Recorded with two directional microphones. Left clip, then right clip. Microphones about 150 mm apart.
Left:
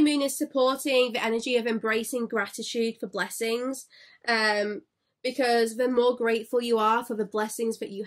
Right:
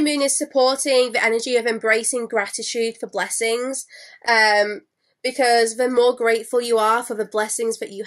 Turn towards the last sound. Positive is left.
turn(degrees=15)  # may be behind; listen again after turning